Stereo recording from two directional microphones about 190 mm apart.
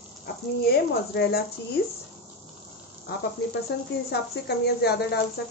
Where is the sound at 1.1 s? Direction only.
60° left (ahead or behind).